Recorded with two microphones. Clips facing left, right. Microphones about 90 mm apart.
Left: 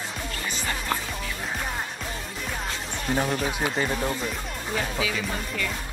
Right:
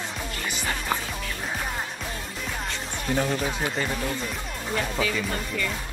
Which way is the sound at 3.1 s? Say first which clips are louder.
Even; 25° left (ahead or behind).